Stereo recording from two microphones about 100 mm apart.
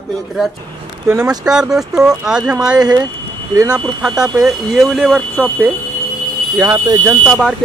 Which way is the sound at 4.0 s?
5° right (ahead or behind).